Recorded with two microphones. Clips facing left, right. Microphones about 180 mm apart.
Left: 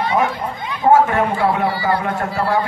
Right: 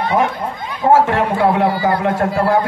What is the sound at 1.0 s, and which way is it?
A man's voice, 55° right (ahead or behind).